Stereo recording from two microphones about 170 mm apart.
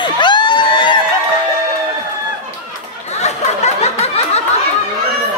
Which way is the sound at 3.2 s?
40° left (ahead or behind).